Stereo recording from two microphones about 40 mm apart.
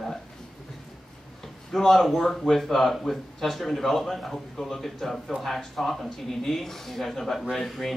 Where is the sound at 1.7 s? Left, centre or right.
Centre.